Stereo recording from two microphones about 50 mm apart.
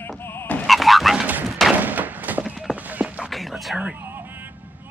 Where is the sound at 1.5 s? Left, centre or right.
Centre.